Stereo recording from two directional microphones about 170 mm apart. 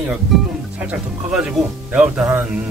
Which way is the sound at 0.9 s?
5° right (ahead or behind).